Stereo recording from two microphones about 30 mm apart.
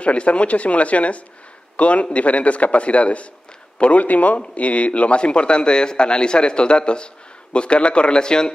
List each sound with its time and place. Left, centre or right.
0.0 s a man's voice: left
4.0 s a man's voice: left
4.4 s a man's voice: left